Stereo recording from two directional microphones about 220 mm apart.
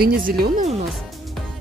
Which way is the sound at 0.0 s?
45° right (ahead or behind).